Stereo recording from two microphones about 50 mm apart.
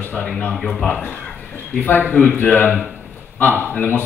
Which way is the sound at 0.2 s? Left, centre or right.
Left.